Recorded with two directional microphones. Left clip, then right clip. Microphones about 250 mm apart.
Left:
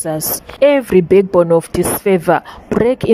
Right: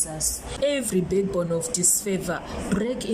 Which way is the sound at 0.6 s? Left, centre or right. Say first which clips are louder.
Left 14 dB; left.